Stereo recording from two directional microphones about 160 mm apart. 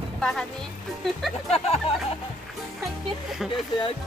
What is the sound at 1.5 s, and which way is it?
Speech, 40° left (ahead or behind).